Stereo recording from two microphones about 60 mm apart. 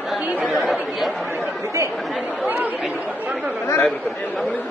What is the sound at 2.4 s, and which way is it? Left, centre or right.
Speech, right.